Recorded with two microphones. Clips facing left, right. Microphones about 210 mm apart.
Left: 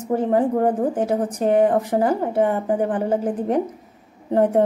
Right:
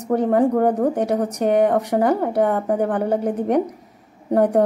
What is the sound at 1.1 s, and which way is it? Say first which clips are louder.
Speech: even; 30° left (ahead or behind).